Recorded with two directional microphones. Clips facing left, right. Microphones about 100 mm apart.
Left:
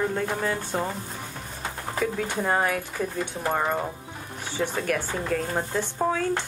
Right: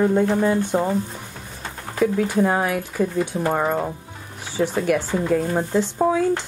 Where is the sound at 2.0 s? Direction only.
5° right (ahead or behind).